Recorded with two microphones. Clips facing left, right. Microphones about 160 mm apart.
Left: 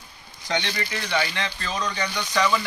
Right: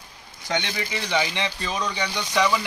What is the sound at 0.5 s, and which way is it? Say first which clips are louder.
Speech: even; 5° right (ahead or behind).